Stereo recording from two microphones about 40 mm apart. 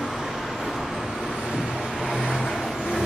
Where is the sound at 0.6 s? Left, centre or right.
Centre.